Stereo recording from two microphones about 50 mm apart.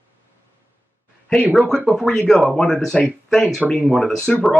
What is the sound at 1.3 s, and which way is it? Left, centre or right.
Speech, centre.